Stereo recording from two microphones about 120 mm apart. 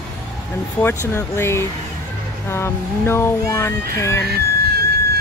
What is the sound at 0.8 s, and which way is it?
Speech, 20° left (ahead or behind).